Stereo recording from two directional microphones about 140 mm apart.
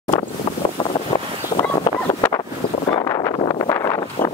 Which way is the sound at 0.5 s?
30° left (ahead or behind).